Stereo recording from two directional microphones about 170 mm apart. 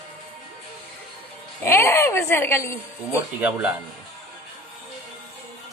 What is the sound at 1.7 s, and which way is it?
A woman's voice, 15° left (ahead or behind).